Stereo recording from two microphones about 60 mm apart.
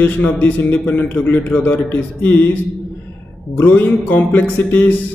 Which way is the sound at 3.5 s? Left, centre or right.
Left.